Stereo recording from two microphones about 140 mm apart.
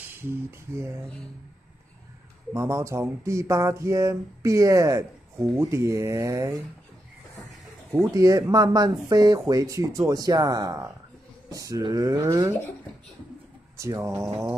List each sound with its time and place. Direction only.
0.2 s a sound: 15° right (ahead or behind)
2.5 s speech: 20° right (ahead or behind)
7.9 s speech: 20° right (ahead or behind)
13.7 s speech: 20° right (ahead or behind)